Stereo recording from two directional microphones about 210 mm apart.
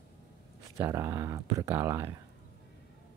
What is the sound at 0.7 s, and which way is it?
Speech, 15° right (ahead or behind).